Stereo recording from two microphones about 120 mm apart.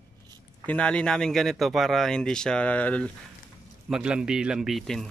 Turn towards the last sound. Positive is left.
turn(degrees=0)  # may be behind; listen again after turning